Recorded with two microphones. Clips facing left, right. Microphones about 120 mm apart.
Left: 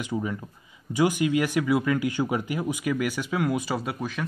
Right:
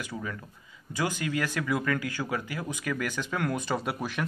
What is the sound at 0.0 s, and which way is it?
Speech, 20° left (ahead or behind).